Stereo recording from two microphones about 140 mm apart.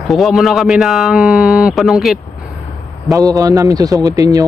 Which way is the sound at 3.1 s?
25° right (ahead or behind).